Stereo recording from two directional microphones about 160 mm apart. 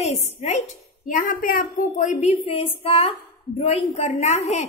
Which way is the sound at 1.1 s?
60° left (ahead or behind).